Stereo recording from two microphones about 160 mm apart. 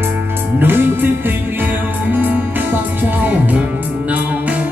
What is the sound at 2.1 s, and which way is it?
Music, 10° right (ahead or behind).